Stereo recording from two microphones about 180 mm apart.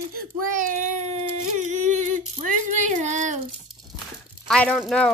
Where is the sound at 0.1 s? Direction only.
50° right (ahead or behind).